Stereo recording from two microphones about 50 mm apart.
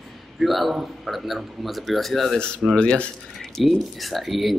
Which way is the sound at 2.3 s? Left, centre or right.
Centre.